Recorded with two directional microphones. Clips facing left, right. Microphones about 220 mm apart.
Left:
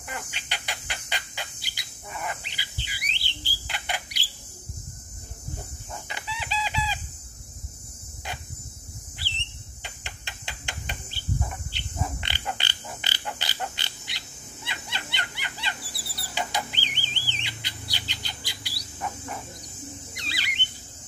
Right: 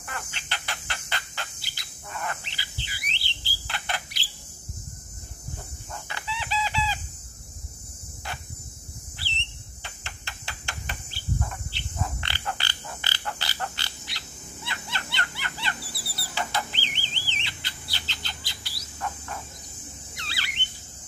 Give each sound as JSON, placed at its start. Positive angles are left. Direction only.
{"t": 0.0, "sound": "bird", "side_deg": 15}
{"t": 6.0, "sound": "chicken", "side_deg": 15}
{"t": 9.8, "sound": "cricket", "side_deg": 15}
{"t": 16.3, "sound": "printer", "side_deg": 15}
{"t": 17.3, "sound": "bird", "side_deg": 15}
{"t": 20.2, "sound": "squeal", "side_deg": 15}